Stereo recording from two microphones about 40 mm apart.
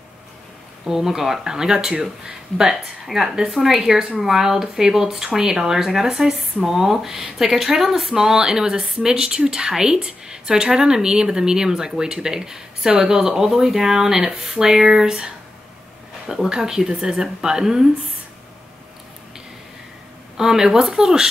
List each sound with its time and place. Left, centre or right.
0.8 s speech: centre
16.4 s speech: centre
20.3 s speech: centre